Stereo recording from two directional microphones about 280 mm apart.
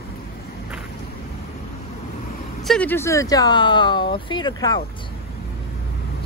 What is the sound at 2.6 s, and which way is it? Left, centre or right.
Speech, centre.